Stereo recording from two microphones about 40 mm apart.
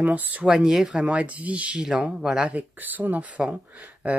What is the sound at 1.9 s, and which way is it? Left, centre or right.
Speech, centre.